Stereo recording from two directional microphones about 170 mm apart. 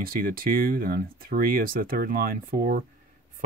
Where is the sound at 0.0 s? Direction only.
60° right (ahead or behind).